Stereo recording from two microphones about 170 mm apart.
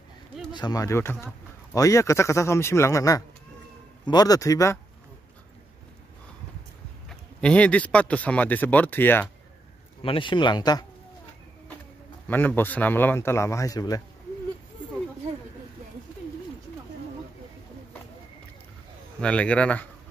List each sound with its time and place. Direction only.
0.5 s speech: 25° left (ahead or behind)
7.1 s speech: 5° left (ahead or behind)
10.0 s speech: 30° left (ahead or behind)
12.3 s speech: 10° left (ahead or behind)
19.2 s speech: 5° left (ahead or behind)